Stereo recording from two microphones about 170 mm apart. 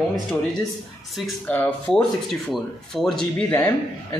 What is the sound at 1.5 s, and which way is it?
Speech, 10° left (ahead or behind).